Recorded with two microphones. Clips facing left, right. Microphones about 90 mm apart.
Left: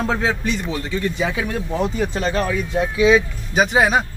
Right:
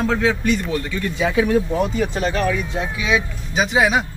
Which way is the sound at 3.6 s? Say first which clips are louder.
Left 1 dB; 45° left (ahead or behind).